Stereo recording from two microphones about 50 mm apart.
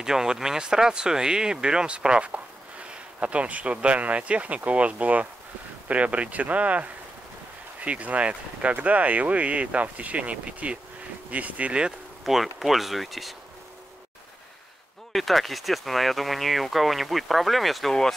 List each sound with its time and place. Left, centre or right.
0.0 s speech: centre
12.3 s speech: centre
15.1 s speech: centre